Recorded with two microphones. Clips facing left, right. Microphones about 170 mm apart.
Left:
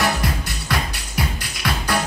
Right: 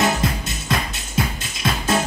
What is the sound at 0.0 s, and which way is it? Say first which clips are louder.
Music: right 2 dB; 20° right (ahead or behind).